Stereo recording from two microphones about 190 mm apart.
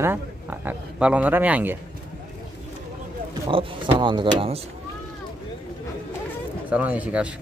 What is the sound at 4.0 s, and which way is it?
Speech, 25° right (ahead or behind).